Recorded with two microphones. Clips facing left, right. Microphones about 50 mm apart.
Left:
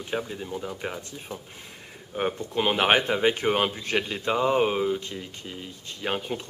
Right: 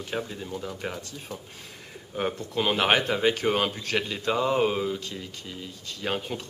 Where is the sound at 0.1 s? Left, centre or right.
Centre.